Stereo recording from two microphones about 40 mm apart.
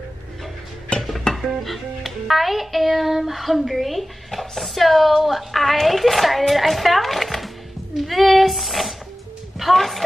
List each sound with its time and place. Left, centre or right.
0.9 s music: left
1.3 s music: centre
8.0 s speech: centre